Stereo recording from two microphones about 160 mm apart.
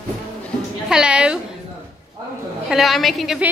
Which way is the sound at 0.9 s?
5° right (ahead or behind).